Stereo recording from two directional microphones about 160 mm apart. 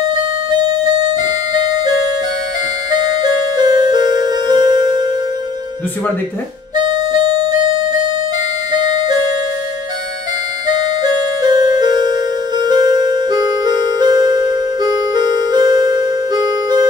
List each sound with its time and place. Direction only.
1.1 s music: 25° right (ahead or behind)
6.8 s music: 30° right (ahead or behind)
8.7 s music: 25° right (ahead or behind)
10.7 s music: 25° right (ahead or behind)